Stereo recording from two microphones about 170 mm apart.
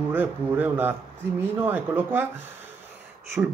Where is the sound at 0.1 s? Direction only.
10° right (ahead or behind).